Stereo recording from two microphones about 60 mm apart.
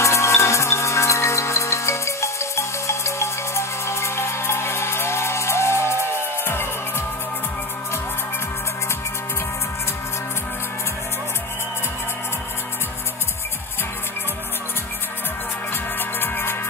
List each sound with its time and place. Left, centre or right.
0.0 s music: left
16.2 s music: left